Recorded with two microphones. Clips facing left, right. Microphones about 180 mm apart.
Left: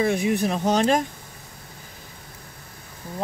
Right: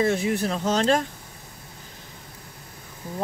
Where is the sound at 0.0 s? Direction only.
15° left (ahead or behind).